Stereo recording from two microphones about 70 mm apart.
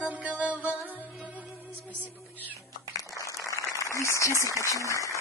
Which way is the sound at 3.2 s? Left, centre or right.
Left.